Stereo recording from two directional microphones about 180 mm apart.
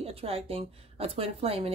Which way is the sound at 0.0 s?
35° right (ahead or behind).